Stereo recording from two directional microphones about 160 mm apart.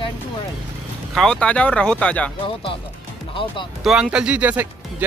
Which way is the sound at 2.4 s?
35° left (ahead or behind).